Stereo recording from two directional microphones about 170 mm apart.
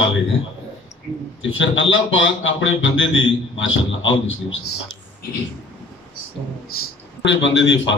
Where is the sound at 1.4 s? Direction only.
90° left.